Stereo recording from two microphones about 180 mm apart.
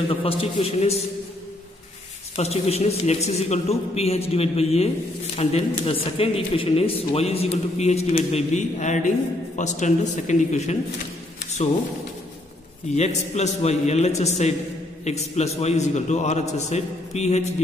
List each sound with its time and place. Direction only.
0.1 s a man's voice: 30° left (ahead or behind)
2.3 s a man's voice: 35° left (ahead or behind)
12.9 s a man's voice: 40° left (ahead or behind)